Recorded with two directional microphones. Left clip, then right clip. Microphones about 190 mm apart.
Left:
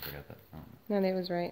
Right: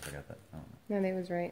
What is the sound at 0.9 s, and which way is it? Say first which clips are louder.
Speech: left 3 dB; 15° left (ahead or behind).